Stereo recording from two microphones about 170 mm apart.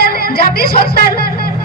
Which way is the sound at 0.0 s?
65° left (ahead or behind).